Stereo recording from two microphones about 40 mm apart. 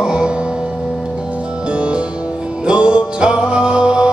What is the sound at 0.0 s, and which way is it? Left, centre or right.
Music, right.